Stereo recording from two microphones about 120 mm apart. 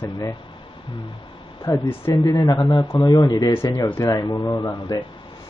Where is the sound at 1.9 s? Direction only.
25° left (ahead or behind).